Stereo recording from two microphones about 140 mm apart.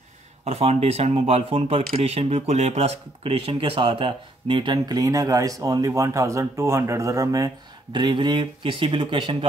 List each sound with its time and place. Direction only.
0.5 s speech: 50° right (ahead or behind)